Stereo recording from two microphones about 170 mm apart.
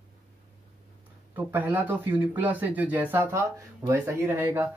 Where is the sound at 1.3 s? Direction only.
10° right (ahead or behind).